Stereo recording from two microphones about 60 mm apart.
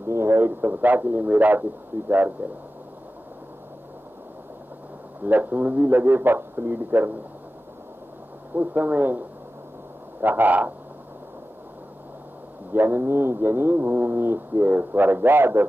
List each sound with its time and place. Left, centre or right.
0.1 s a sound: right
0.5 s a man's voice: right
5.2 s speech: right
8.5 s a man's voice: right
10.2 s speech: right
12.7 s speech: right